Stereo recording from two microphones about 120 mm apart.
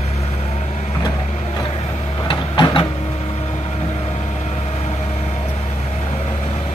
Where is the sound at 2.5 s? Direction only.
40° left (ahead or behind).